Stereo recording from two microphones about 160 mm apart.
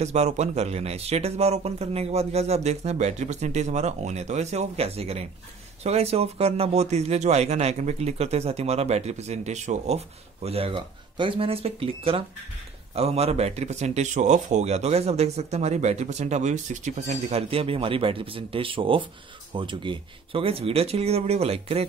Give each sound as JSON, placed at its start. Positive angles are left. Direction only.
{"t": 0.0, "sound": "speech", "side_deg": -45}